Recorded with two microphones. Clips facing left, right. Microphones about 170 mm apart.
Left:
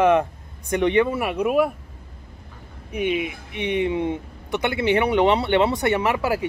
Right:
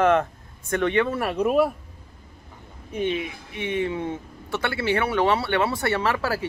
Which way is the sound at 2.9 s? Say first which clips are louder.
Left 2 dB; 15° left (ahead or behind).